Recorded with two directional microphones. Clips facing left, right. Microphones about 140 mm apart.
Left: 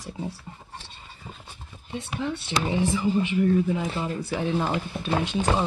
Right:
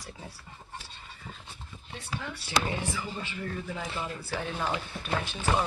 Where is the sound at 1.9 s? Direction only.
20° left (ahead or behind).